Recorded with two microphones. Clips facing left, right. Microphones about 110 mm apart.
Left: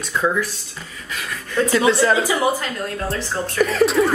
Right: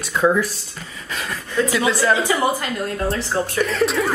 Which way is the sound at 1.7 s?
Centre (ahead or behind).